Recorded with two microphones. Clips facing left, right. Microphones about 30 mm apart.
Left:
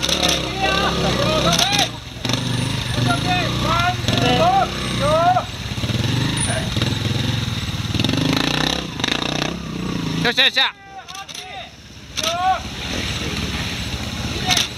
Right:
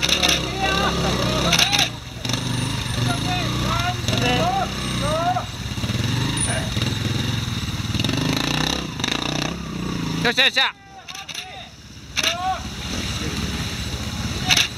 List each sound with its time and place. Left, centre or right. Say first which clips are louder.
0.0 s vehicle: even; centre
0.5 s vehicle: left 2 dB; centre
1.5 s vehicle: left 1 dB; centre
2.2 s vehicle: left 3 dB; centre
12.4 s vehicle: left 5 dB; left